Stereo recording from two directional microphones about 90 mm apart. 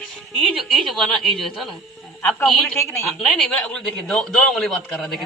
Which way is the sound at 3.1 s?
5° left (ahead or behind).